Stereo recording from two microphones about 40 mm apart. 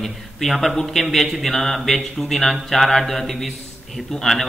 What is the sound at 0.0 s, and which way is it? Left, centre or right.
A man's voice, centre.